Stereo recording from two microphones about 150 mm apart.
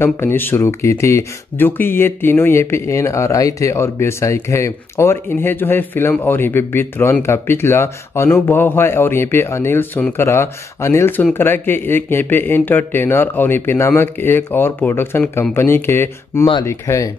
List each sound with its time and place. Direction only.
0.0 s speech: 15° left (ahead or behind)